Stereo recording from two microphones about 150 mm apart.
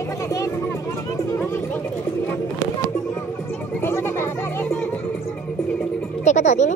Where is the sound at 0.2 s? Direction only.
20° left (ahead or behind).